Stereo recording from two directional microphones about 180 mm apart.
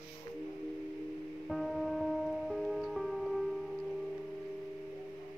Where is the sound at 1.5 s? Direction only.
Centre (ahead or behind).